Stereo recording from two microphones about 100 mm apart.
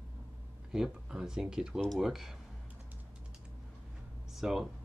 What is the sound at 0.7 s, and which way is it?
Speech, 5° right (ahead or behind).